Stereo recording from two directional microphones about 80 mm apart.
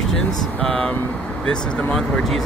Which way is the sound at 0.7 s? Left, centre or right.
Centre.